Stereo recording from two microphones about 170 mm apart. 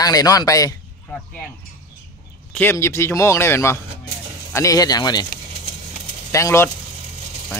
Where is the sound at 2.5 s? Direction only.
10° left (ahead or behind).